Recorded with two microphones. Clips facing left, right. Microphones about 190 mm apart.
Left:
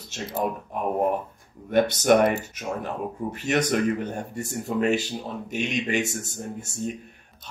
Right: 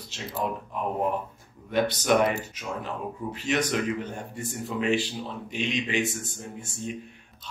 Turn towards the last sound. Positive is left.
turn(degrees=40)  # may be behind; listen again after turning